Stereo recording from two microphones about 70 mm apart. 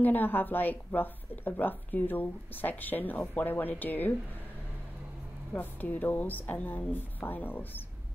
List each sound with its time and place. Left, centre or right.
0.0 s a woman's voice: left
5.5 s a woman's voice: left